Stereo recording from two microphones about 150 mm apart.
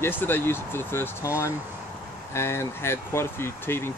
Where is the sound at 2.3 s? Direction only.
15° left (ahead or behind).